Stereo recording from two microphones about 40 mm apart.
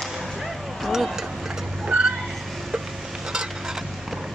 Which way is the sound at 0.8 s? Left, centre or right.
Centre.